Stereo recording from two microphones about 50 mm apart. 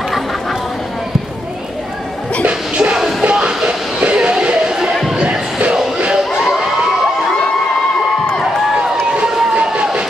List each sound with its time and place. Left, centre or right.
2.8 s music: centre
5.9 s a sound: centre
8.7 s crowd: centre